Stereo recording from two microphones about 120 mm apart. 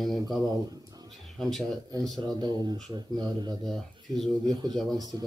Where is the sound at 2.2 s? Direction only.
35° right (ahead or behind).